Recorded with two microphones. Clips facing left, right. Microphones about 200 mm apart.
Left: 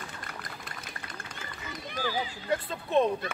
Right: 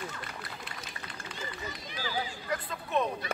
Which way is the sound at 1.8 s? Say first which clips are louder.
Left 9 dB; 55° left (ahead or behind).